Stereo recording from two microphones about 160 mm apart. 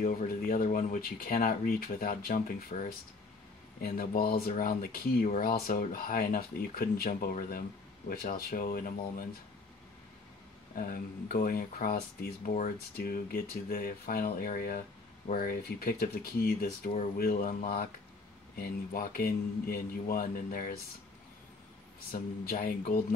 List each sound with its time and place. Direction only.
0.0 s speech: 55° left (ahead or behind)
3.8 s speech: 70° left (ahead or behind)
10.7 s speech: 60° left (ahead or behind)
18.6 s speech: 65° left (ahead or behind)
22.1 s speech: 65° left (ahead or behind)